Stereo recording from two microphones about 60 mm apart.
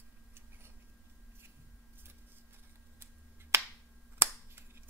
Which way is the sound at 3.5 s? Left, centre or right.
Right.